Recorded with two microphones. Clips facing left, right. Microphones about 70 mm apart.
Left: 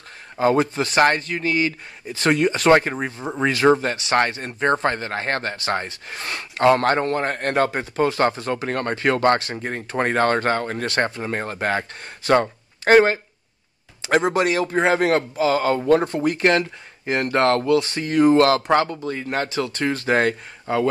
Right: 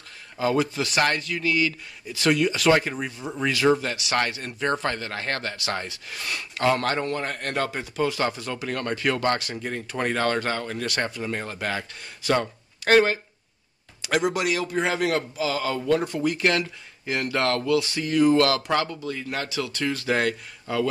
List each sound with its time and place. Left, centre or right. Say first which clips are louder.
0.4 s speech: left 5 dB; left